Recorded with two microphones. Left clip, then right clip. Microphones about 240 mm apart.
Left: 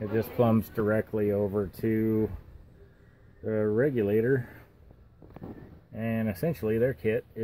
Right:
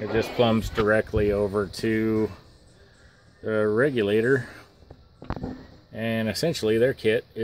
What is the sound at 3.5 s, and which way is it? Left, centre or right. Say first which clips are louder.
Speech: right 4 dB; centre.